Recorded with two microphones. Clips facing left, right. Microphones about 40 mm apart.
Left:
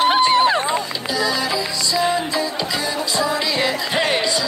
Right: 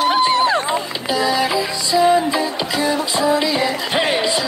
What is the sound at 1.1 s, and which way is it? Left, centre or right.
Music, right.